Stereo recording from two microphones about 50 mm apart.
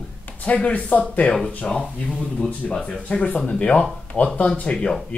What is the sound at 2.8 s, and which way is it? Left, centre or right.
Speech, left.